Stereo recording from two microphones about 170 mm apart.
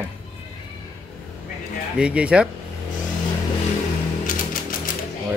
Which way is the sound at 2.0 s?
5° right (ahead or behind).